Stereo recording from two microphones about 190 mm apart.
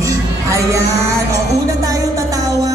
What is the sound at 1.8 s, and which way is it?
Speech, 15° right (ahead or behind).